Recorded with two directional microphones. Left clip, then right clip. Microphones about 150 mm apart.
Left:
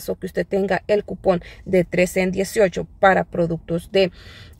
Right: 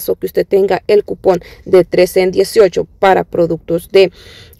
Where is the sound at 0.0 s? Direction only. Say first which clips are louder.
Right 10 dB; 25° right (ahead or behind).